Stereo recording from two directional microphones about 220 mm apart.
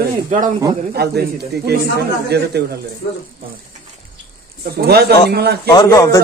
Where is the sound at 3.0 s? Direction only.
45° left (ahead or behind).